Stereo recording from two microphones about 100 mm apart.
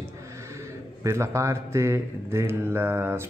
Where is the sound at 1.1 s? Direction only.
30° right (ahead or behind).